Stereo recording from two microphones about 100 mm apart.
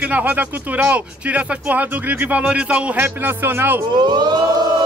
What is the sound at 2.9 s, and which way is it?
Speech, 20° right (ahead or behind).